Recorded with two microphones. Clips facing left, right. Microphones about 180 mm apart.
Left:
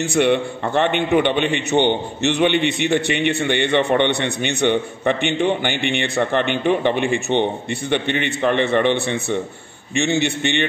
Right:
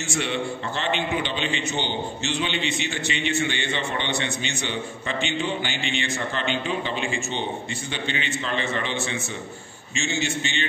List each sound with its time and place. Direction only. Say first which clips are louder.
0.0 s a man's voice: left 10 dB; 60° left (ahead or behind)